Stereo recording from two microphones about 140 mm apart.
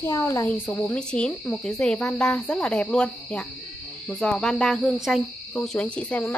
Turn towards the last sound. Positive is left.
turn(degrees=10)  # may be behind; listen again after turning